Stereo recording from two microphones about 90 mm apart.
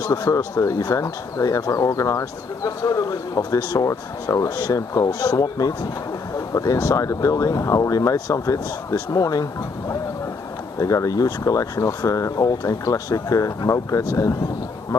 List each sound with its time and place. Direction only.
0.0 s speech: 40° left (ahead or behind)